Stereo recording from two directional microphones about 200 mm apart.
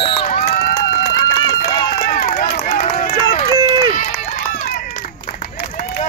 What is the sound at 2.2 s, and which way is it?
Run, 45° left (ahead or behind).